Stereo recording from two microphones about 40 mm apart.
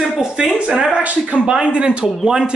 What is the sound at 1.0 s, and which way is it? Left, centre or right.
Speech, right.